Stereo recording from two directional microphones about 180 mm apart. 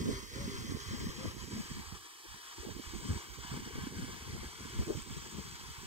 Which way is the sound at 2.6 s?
35° right (ahead or behind).